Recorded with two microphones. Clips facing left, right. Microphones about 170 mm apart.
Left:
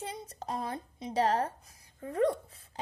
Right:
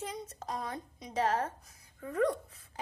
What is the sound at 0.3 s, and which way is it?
A woman's voice, 30° left (ahead or behind).